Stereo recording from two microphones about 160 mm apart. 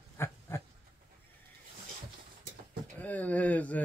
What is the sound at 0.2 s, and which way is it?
Dog, 15° left (ahead or behind).